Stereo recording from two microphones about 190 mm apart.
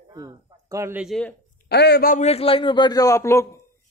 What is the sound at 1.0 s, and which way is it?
Speech, 5° left (ahead or behind).